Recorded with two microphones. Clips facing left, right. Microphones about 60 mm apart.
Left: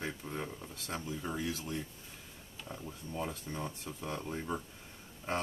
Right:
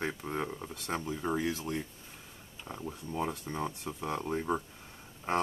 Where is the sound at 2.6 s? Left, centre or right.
Right.